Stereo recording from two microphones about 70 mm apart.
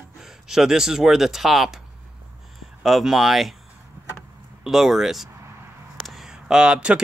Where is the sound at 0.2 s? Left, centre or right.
Centre.